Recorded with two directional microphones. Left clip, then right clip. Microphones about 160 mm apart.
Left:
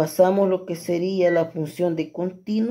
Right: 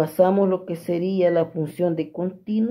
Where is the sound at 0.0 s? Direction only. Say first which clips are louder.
Left 1 dB; 5° left (ahead or behind).